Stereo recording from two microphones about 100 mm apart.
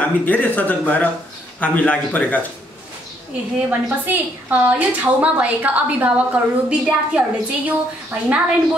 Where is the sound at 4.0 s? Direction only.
20° right (ahead or behind).